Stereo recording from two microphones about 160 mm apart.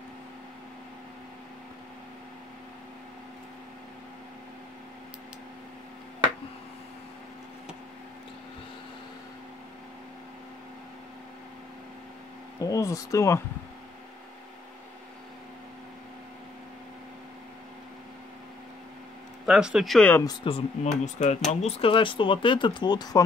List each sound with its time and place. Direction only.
12.5 s a sound: 20° left (ahead or behind)
19.4 s speech: 5° right (ahead or behind)
20.4 s speech: 40° left (ahead or behind)